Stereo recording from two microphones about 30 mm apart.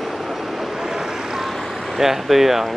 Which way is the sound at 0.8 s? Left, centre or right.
Centre.